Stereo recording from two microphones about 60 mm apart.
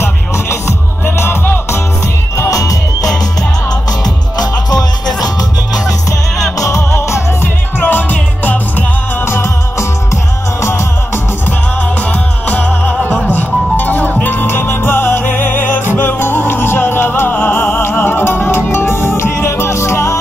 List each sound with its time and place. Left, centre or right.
0.0 s music: left
2.5 s music: left
4.0 s music: left
6.6 s music: left
7.4 s music: left
9.2 s music: left
12.0 s music: left